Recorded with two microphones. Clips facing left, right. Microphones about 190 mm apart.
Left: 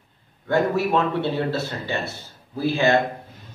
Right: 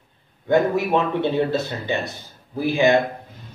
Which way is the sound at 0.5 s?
15° right (ahead or behind).